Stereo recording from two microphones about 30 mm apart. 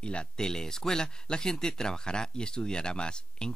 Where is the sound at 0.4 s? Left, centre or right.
Centre.